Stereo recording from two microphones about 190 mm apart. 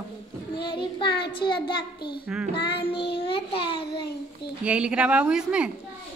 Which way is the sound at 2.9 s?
60° left (ahead or behind).